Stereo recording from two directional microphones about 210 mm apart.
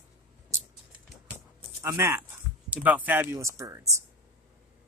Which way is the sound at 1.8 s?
15° right (ahead or behind).